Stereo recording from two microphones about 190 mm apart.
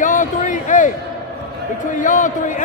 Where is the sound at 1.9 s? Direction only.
40° left (ahead or behind).